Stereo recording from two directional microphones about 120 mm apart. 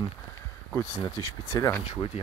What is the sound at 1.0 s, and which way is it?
Speech, 25° left (ahead or behind).